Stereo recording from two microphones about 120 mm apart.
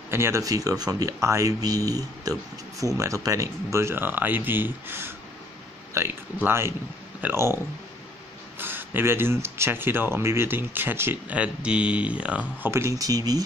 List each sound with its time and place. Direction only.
0.1 s speech: 25° right (ahead or behind)
12.7 s speech: 25° right (ahead or behind)